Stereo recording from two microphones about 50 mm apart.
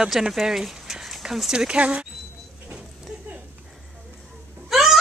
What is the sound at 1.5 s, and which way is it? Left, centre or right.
Speech, centre.